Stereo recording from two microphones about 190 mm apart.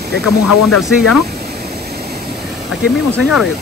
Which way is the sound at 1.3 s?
55° right (ahead or behind).